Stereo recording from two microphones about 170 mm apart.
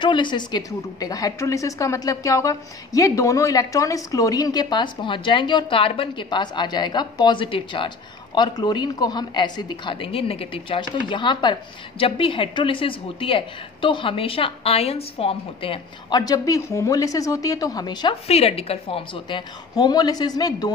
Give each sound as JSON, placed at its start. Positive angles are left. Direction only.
{"t": 0.0, "sound": "a woman's voice", "side_deg": 25}
{"t": 18.2, "sound": "a woman's voice", "side_deg": 35}